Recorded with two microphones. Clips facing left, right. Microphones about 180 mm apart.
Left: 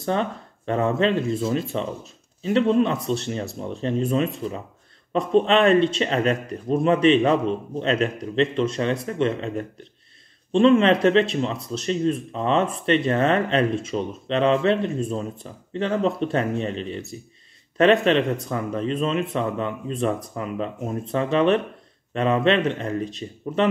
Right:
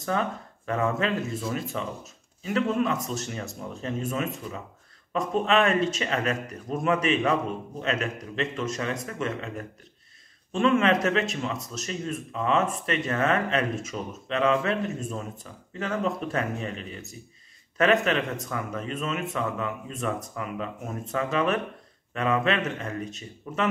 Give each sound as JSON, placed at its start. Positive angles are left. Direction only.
{"t": 0.0, "sound": "speech", "side_deg": 30}